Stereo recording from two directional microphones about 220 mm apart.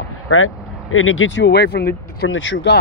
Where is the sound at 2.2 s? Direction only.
60° left (ahead or behind).